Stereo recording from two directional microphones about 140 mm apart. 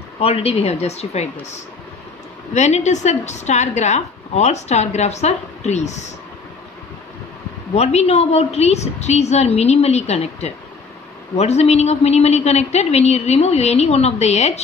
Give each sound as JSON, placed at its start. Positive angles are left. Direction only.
{"t": 0.2, "sound": "a woman's voice", "side_deg": 45}
{"t": 7.7, "sound": "a woman's voice", "side_deg": 50}